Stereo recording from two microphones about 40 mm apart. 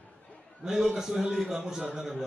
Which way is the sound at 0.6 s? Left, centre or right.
Centre.